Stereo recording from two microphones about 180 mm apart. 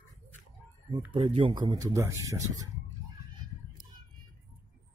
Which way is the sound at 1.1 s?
25° right (ahead or behind).